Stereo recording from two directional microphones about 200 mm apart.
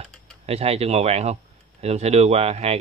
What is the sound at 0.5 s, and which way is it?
A man's voice, 30° right (ahead or behind).